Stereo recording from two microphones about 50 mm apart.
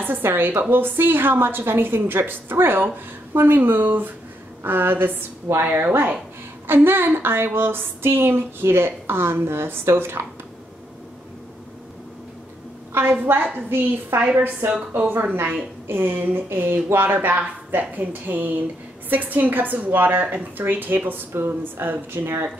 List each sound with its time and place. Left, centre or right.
0.0 s speech: right
5.5 s a woman's voice: right
6.7 s speech: right
12.9 s a woman's voice: right